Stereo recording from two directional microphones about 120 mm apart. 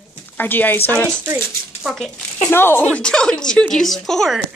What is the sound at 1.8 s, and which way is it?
Speech, centre (ahead or behind).